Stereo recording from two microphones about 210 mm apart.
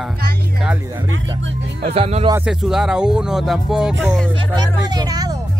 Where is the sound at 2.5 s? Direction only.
Centre (ahead or behind).